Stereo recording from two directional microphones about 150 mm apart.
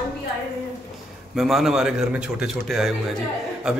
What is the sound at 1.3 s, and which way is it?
A man's voice, centre (ahead or behind).